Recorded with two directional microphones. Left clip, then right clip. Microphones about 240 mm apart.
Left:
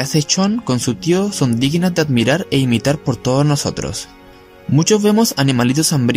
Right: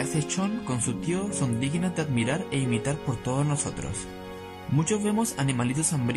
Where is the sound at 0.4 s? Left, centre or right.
Left.